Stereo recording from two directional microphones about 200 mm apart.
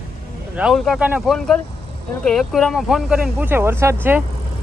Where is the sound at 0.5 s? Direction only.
Centre (ahead or behind).